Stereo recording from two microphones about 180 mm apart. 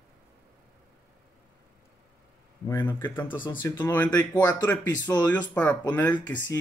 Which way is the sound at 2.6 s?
20° left (ahead or behind).